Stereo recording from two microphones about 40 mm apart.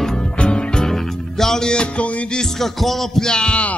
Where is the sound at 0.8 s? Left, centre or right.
Centre.